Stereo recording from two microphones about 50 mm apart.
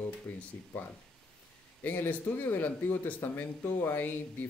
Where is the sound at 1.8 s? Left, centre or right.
Left.